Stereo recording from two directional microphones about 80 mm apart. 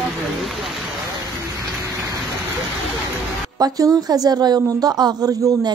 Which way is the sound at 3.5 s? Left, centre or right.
Right.